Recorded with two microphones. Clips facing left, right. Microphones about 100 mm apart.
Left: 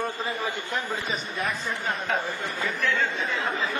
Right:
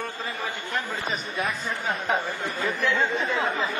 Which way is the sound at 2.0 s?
15° right (ahead or behind).